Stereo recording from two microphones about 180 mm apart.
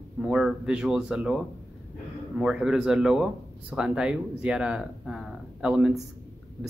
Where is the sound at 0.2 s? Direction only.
5° right (ahead or behind).